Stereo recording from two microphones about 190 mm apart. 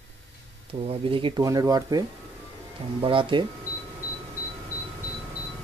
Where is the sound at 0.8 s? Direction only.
30° right (ahead or behind).